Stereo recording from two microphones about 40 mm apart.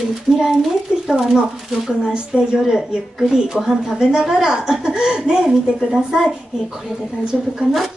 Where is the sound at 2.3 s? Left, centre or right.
Centre.